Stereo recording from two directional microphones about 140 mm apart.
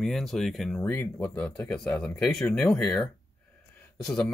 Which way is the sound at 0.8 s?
15° left (ahead or behind).